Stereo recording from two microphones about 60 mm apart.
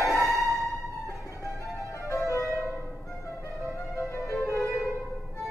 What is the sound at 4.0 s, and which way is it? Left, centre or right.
Music, left.